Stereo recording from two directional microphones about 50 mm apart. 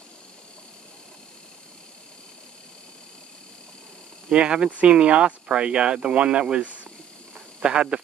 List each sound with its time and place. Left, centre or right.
4.3 s speech: centre